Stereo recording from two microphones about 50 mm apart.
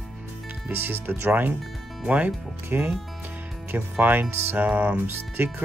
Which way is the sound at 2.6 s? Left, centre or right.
Right.